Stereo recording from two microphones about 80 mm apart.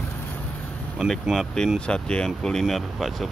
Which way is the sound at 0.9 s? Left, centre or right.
Centre.